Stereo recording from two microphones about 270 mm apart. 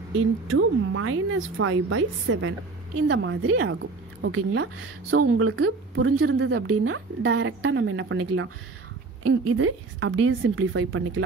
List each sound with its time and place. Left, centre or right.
0.5 s speech: right